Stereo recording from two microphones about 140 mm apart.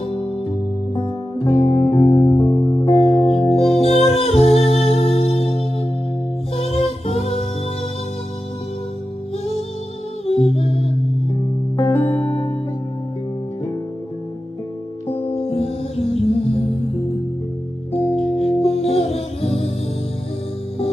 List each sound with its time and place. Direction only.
1.4 s music: 20° left (ahead or behind)
2.9 s music: 45° left (ahead or behind)
3.7 s humming: 45° left (ahead or behind)
6.5 s music: 45° left (ahead or behind)
10.2 s humming: 45° left (ahead or behind)
11.7 s music: 15° left (ahead or behind)
15.0 s music: 15° left (ahead or behind)
15.3 s music: 45° left (ahead or behind)
18.1 s music: 45° left (ahead or behind)